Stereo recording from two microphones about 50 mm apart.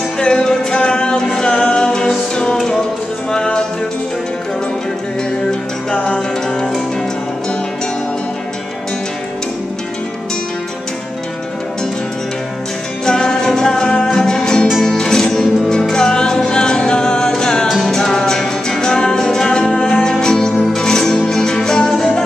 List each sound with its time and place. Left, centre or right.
0.2 s music: centre
5.5 s music: centre
13.0 s music: centre
17.6 s music: centre